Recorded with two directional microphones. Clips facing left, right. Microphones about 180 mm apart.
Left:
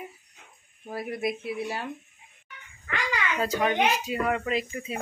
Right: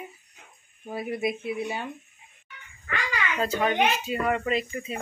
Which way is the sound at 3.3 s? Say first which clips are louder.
Right 1 dB; 10° left (ahead or behind).